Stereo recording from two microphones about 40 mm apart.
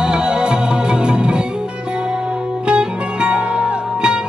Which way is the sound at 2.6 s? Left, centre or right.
Right.